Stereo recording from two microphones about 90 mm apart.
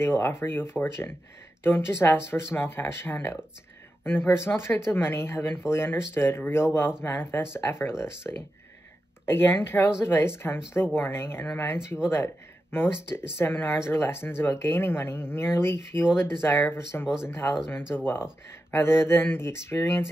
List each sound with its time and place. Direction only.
0.0 s speech: 25° left (ahead or behind)
17.0 s speech: 10° right (ahead or behind)
17.3 s speech: 30° left (ahead or behind)